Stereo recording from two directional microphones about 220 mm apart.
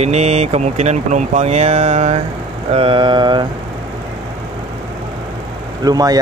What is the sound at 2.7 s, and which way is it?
Vehicle, 25° right (ahead or behind).